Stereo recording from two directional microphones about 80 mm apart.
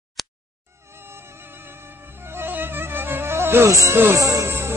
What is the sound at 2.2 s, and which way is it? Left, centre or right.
Music, right.